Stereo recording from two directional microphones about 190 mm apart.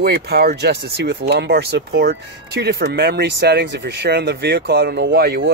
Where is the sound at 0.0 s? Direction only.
55° right (ahead or behind).